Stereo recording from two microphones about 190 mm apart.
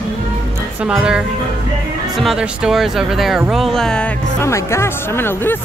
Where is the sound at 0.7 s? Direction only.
5° right (ahead or behind).